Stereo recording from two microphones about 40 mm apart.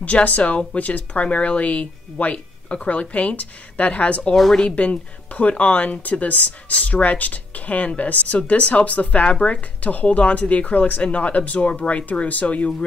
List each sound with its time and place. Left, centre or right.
0.0 s speech: left